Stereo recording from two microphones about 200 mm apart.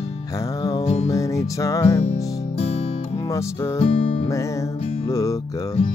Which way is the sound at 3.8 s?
30° left (ahead or behind).